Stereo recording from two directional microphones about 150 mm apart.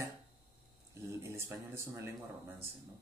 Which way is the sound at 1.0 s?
20° right (ahead or behind).